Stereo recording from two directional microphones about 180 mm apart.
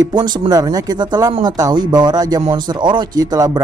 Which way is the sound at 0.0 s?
25° right (ahead or behind).